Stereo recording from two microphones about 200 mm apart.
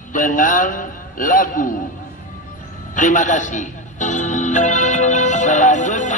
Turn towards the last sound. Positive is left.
turn(degrees=40)  # may be behind; listen again after turning